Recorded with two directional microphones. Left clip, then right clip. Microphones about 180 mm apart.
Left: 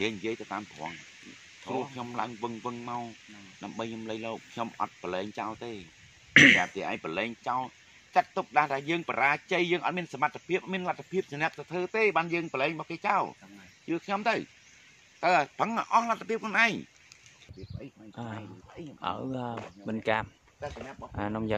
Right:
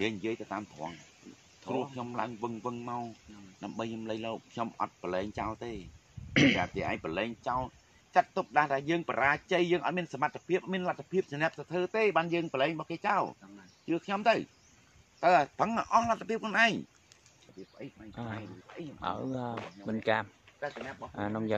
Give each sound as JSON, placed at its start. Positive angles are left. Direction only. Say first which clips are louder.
{"t": 0.0, "sound": "speech", "louder": "left 2 dB", "side_deg": -20}
{"t": 6.3, "sound": "speech", "louder": "left 8 dB", "side_deg": 0}
{"t": 6.7, "sound": "speech", "louder": "left 1 dB", "side_deg": -15}
{"t": 18.1, "sound": "speech", "louder": "left 1 dB", "side_deg": 10}